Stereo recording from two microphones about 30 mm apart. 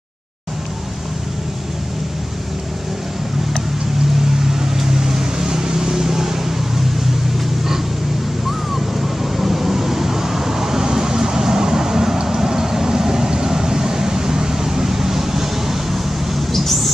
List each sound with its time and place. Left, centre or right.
4.4 s vehicle: centre
8.7 s vehicle: centre
16.5 s a sound: centre